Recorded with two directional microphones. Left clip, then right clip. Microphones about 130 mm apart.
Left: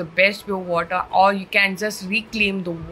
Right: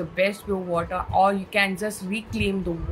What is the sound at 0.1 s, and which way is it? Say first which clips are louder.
Speech: left 6 dB; 15° right (ahead or behind).